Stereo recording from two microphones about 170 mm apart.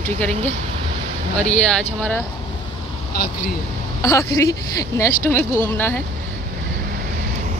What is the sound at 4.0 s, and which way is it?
A woman's voice, 20° left (ahead or behind).